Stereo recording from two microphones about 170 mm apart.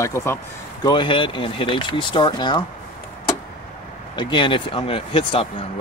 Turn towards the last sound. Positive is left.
turn(degrees=30)  # may be behind; listen again after turning